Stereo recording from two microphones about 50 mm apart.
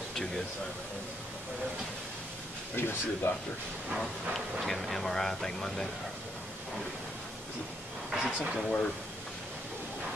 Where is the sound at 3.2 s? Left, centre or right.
Left.